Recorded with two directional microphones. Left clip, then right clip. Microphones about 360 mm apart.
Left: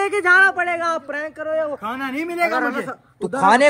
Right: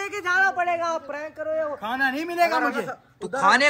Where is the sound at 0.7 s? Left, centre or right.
Left.